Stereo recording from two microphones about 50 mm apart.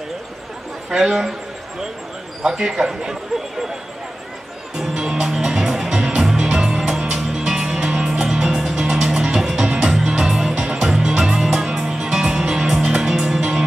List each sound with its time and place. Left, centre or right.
0.8 s speech: centre
2.4 s speech: centre
4.7 s music: centre
10.5 s music: right
10.8 s music: centre